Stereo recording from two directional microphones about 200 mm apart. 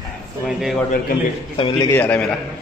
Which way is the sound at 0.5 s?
Centre (ahead or behind).